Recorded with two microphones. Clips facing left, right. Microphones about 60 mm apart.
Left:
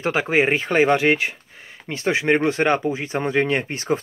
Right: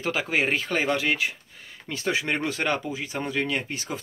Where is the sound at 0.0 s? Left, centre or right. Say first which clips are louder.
Left 6 dB; left.